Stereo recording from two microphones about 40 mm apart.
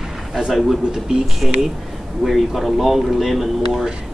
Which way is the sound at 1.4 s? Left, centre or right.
Centre.